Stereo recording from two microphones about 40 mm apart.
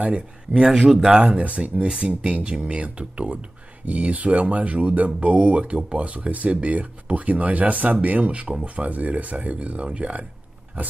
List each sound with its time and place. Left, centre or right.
0.7 s speech: centre
1.1 s speech: right